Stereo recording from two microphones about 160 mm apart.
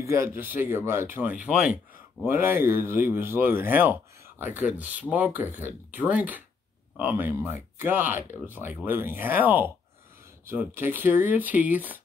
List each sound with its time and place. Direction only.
0.0 s speech: 15° right (ahead or behind)